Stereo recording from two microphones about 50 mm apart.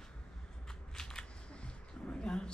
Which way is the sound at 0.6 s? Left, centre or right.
Centre.